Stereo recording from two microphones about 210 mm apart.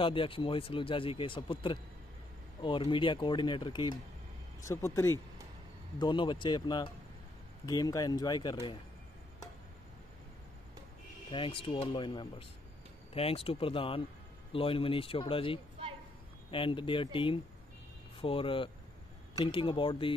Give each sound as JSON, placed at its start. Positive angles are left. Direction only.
{"t": 0.0, "sound": "speech", "side_deg": 25}
{"t": 5.9, "sound": "speech", "side_deg": 20}
{"t": 11.2, "sound": "speech", "side_deg": 25}